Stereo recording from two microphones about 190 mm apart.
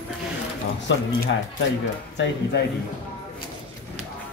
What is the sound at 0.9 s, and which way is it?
Speech, 70° left (ahead or behind).